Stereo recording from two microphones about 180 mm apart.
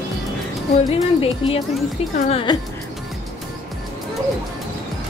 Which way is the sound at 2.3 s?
30° left (ahead or behind).